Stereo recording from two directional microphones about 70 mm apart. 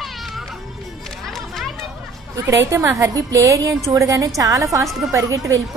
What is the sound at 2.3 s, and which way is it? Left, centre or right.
A woman's voice, right.